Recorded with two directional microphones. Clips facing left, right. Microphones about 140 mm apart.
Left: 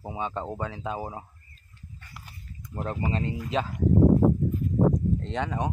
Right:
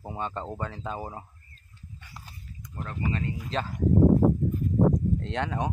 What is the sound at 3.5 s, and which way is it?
Speech, 5° left (ahead or behind).